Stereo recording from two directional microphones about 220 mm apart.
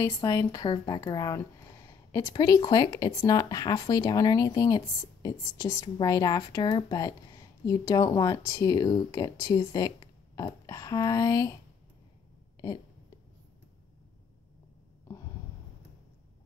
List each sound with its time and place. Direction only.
0.0 s speech: 15° left (ahead or behind)